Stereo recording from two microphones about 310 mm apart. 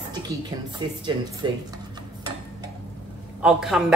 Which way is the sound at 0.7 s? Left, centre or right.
Centre.